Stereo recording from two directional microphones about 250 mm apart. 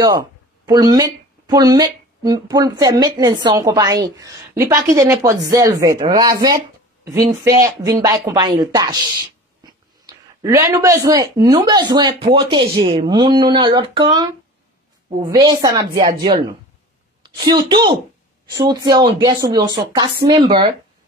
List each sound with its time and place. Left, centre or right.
0.0 s a woman's voice: centre
17.2 s a woman's voice: centre